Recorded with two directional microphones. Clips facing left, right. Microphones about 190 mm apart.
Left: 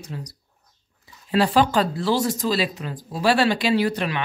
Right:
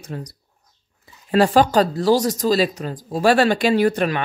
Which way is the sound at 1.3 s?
45° right (ahead or behind).